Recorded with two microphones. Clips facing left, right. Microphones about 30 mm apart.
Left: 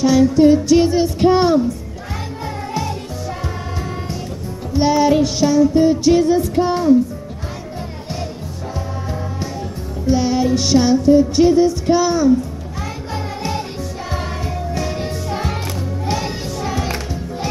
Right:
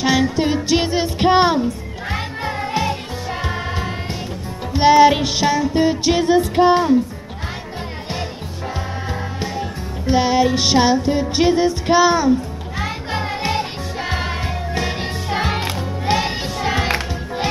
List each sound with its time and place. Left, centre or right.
0.0 s music: right
10.0 s music: right